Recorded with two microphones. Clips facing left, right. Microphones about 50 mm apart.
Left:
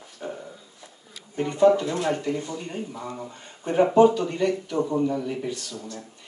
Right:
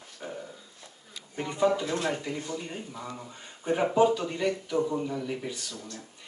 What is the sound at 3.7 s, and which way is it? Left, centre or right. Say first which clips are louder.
Speech: left 6 dB; centre.